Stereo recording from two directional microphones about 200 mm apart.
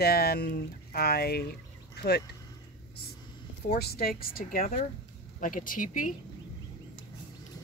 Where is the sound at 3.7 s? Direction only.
50° left (ahead or behind).